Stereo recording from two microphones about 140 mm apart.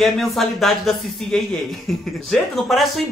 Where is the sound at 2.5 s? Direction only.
Centre (ahead or behind).